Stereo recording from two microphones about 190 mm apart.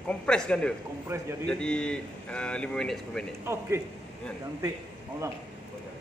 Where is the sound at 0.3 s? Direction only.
5° left (ahead or behind).